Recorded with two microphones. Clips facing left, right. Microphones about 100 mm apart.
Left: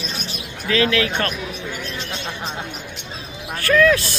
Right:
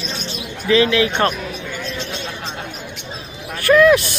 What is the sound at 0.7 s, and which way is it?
Speech, 20° right (ahead or behind).